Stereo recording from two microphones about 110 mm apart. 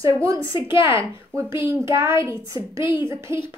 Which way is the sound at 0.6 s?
50° left (ahead or behind).